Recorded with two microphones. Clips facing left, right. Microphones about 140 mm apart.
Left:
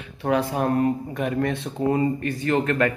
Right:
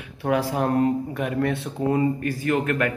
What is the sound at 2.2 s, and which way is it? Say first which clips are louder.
Speech: left 1 dB; 30° left (ahead or behind).